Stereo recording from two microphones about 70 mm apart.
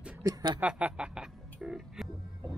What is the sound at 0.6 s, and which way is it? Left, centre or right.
Speech, centre.